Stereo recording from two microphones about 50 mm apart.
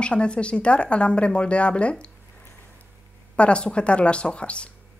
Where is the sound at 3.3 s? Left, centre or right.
Left.